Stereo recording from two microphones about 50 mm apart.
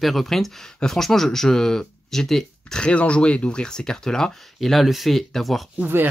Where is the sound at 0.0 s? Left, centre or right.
Centre.